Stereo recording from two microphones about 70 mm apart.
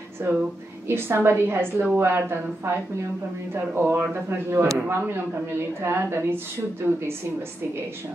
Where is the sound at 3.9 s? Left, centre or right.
Right.